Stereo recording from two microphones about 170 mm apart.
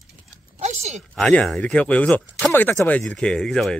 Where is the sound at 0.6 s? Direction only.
40° right (ahead or behind).